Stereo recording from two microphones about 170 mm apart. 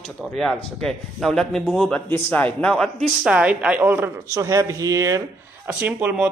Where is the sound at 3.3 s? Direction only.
10° right (ahead or behind).